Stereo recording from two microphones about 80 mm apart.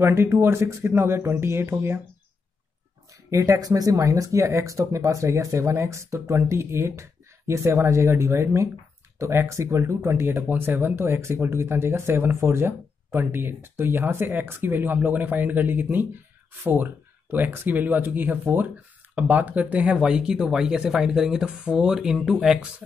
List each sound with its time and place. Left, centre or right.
0.0 s speech: right
3.1 s speech: right
10.3 s speech: right